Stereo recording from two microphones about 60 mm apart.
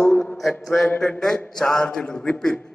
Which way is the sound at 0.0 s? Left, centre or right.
Left.